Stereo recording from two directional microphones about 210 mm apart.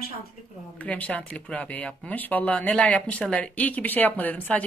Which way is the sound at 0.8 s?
5° left (ahead or behind).